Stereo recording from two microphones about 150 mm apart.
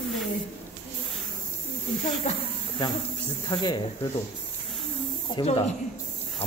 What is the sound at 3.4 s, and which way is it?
Speech, 30° left (ahead or behind).